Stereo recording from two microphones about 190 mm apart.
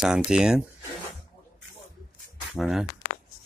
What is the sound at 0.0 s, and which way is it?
Speech, 5° right (ahead or behind).